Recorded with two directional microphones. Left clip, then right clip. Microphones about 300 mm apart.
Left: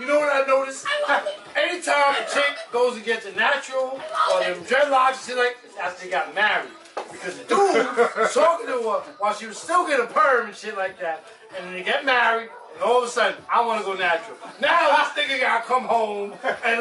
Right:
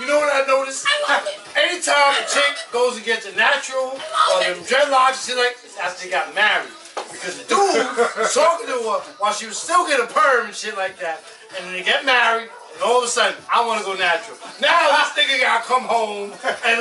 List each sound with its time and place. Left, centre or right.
0.0 s a sound: centre
2.9 s speech: centre
9.8 s speech: centre
15.6 s music: centre
16.4 s speech: centre